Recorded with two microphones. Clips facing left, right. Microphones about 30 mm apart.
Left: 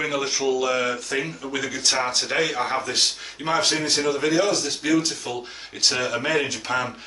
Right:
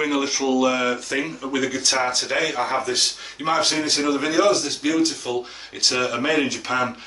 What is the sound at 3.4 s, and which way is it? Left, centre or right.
Speech, centre.